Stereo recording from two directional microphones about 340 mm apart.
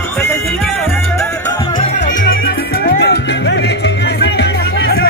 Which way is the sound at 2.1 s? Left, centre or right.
Left.